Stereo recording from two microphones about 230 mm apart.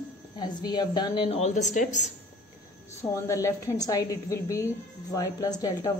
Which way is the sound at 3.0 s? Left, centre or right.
Centre.